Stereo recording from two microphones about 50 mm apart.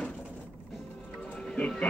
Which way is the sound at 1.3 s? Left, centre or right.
Left.